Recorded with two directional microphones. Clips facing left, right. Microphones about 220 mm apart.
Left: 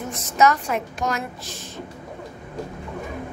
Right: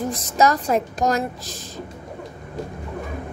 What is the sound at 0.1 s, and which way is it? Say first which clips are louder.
A woman's voice: left 2 dB; 35° right (ahead or behind).